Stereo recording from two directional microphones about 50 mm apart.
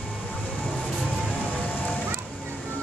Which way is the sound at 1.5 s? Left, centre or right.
Left.